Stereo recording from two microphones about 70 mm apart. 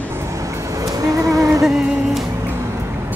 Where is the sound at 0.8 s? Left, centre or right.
Right.